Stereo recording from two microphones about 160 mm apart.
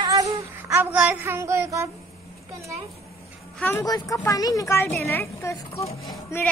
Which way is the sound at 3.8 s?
25° left (ahead or behind).